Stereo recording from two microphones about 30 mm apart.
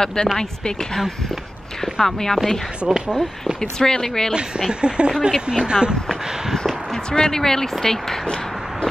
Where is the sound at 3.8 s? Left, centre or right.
Centre.